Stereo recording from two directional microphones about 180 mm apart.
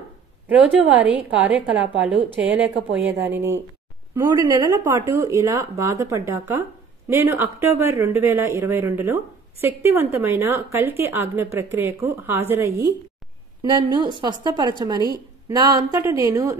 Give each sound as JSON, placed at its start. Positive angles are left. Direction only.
{"t": 0.5, "sound": "a woman's voice", "side_deg": -10}